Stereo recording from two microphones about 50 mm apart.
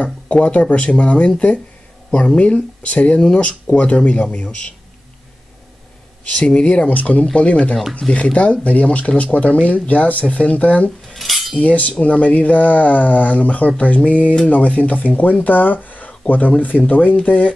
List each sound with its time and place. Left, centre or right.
0.0 s speech: left
6.2 s speech: left
8.0 s speech: centre
8.4 s speech: left
11.1 s cutlery: centre
11.6 s speech: left